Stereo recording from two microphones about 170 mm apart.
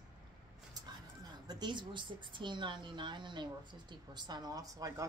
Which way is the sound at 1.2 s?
25° right (ahead or behind).